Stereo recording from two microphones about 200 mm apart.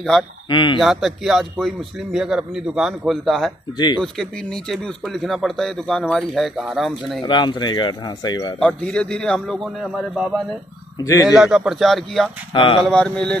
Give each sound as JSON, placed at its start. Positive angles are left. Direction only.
{"t": 0.5, "sound": "speech", "side_deg": 25}
{"t": 0.7, "sound": "speech", "side_deg": 0}
{"t": 3.7, "sound": "speech", "side_deg": 20}
{"t": 4.0, "sound": "speech", "side_deg": 0}
{"t": 7.2, "sound": "speech", "side_deg": 20}
{"t": 8.5, "sound": "speech", "side_deg": 5}
{"t": 11.0, "sound": "speech", "side_deg": 20}
{"t": 11.2, "sound": "speech", "side_deg": 0}
{"t": 12.5, "sound": "speech", "side_deg": 25}
{"t": 12.8, "sound": "speech", "side_deg": 5}